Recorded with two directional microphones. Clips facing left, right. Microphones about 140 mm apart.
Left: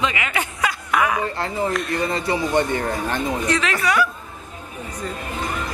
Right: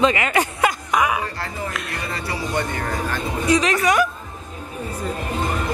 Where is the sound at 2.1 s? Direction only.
25° left (ahead or behind).